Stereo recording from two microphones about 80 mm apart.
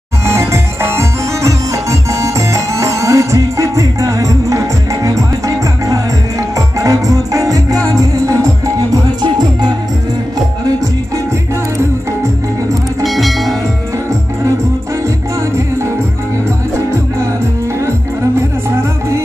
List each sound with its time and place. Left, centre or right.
0.3 s music: right
6.8 s music: right
9.2 s music: right
13.0 s music: centre
18.8 s music: right